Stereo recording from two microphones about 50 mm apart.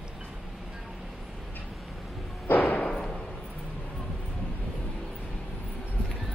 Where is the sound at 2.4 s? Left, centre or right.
Left.